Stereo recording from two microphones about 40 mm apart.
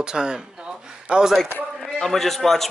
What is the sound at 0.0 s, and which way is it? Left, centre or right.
A man's voice, right.